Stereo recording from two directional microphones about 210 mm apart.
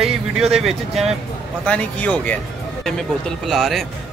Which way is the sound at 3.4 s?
Centre (ahead or behind).